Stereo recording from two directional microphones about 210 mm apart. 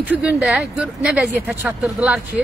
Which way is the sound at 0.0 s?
10° right (ahead or behind).